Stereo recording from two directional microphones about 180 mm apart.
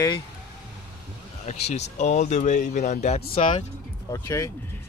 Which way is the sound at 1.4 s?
40° left (ahead or behind).